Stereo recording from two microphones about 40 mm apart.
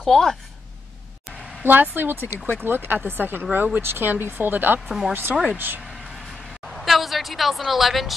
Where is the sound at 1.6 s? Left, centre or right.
Right.